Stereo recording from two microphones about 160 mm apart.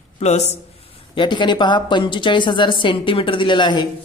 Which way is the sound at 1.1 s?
30° left (ahead or behind).